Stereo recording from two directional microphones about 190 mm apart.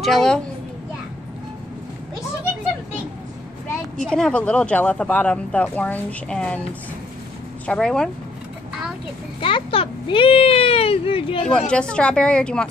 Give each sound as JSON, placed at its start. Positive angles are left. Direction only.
{"t": 0.0, "sound": "a woman's voice", "side_deg": 0}
{"t": 4.0, "sound": "speech", "side_deg": 5}
{"t": 7.6, "sound": "a woman's voice", "side_deg": 5}
{"t": 9.4, "sound": "a child's voice", "side_deg": 25}
{"t": 11.7, "sound": "a woman's voice", "side_deg": 5}